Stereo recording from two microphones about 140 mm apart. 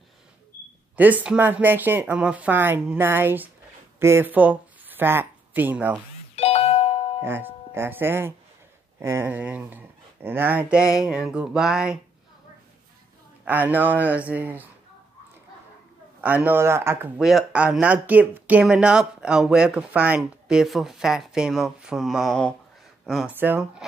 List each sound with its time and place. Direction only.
0.9 s speech: 10° right (ahead or behind)
6.3 s doorbell: 45° left (ahead or behind)
7.2 s speech: 15° right (ahead or behind)
13.5 s speech: 15° right (ahead or behind)
16.2 s speech: 10° right (ahead or behind)
17.2 s speech: centre (ahead or behind)